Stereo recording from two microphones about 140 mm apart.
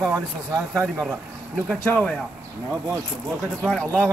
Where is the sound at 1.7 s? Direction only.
5° left (ahead or behind).